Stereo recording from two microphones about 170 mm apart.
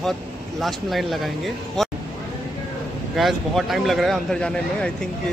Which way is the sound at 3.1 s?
Centre (ahead or behind).